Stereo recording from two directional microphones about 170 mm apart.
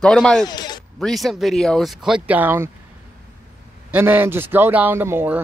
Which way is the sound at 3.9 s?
10° right (ahead or behind).